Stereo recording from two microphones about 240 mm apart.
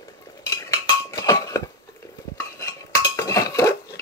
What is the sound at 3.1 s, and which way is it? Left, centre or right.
Dishes, centre.